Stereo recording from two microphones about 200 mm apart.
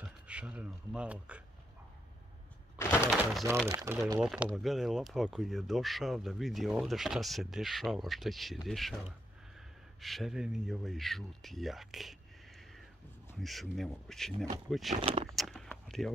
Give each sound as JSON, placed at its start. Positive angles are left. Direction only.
{"t": 0.0, "sound": "speech", "side_deg": -5}
{"t": 3.6, "sound": "speech", "side_deg": -15}
{"t": 4.2, "sound": "speech", "side_deg": 0}
{"t": 13.4, "sound": "speech", "side_deg": 0}
{"t": 15.0, "sound": "speech", "side_deg": -25}
{"t": 15.3, "sound": "a sound", "side_deg": 0}